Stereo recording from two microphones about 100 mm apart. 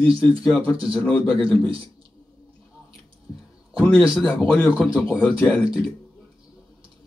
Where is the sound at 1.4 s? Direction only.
60° right (ahead or behind).